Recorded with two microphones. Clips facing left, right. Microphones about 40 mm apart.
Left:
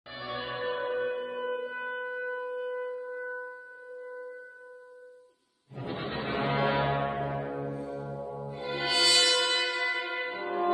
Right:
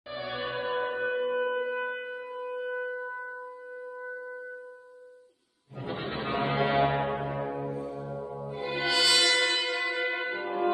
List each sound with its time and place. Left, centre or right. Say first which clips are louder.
0.1 s music: right 2 dB; centre
2.0 s a sound: left 2 dB; centre
2.9 s music: even; centre
3.9 s singing bowl: even; centre
5.8 s music: right 1 dB; centre
9.2 s brass instrument: right 1 dB; right
9.6 s church bell: even; centre